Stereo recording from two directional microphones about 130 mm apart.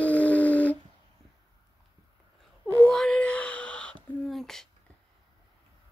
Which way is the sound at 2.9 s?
5° left (ahead or behind).